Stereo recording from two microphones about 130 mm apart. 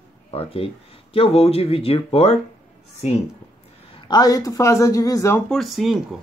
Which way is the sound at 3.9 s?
30° left (ahead or behind).